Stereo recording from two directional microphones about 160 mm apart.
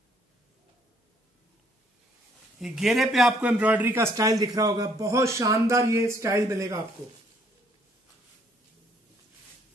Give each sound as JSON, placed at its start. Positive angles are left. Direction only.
{"t": 2.6, "sound": "a man's voice", "side_deg": 0}